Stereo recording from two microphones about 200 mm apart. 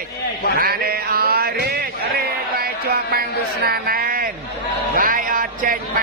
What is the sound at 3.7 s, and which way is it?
Speech, 50° right (ahead or behind).